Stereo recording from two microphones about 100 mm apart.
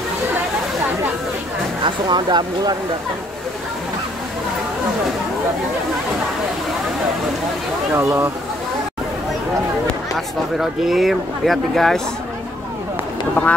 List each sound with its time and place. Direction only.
1.9 s speech: 50° right (ahead or behind)
7.9 s speech: 30° right (ahead or behind)
10.1 s speech: 5° right (ahead or behind)